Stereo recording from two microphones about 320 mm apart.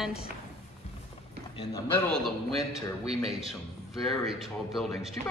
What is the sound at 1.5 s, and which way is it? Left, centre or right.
Speech, centre.